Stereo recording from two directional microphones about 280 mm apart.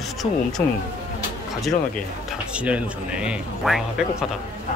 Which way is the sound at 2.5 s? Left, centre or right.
Centre.